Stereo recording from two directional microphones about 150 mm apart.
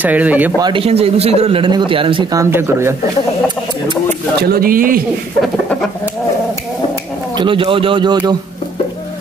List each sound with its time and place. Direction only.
0.0 s speech: 10° right (ahead or behind)
0.6 s speech: 30° right (ahead or behind)
0.8 s a man's voice: 40° right (ahead or behind)
2.3 s speech: 20° right (ahead or behind)
4.5 s a man's voice: 80° right
7.3 s a man's voice: 35° right (ahead or behind)